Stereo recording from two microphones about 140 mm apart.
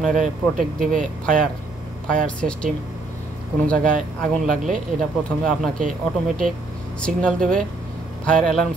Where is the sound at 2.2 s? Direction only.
5° left (ahead or behind).